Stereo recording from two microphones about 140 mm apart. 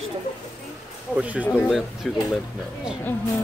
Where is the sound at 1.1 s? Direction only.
10° right (ahead or behind).